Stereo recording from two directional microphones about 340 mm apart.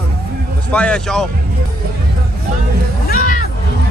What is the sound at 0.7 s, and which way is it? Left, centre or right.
Speech, centre.